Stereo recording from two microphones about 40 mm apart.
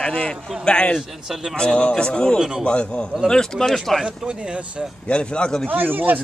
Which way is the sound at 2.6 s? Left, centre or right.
Left.